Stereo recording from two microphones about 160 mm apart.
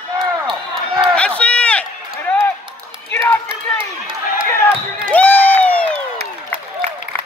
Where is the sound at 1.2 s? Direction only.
5° left (ahead or behind).